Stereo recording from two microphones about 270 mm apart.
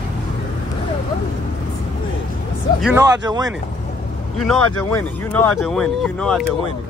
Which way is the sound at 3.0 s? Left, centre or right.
Centre.